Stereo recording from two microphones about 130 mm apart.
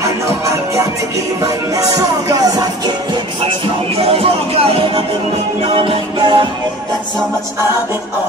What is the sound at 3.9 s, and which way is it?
Speech, 50° right (ahead or behind).